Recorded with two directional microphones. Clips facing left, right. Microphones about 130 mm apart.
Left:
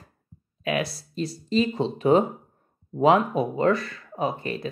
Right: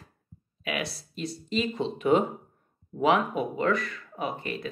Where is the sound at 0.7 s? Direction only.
35° left (ahead or behind).